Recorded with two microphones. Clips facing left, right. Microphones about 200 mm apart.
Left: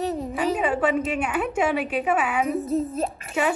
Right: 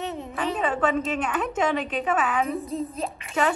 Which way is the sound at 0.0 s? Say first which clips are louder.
Left 5 dB; 35° left (ahead or behind).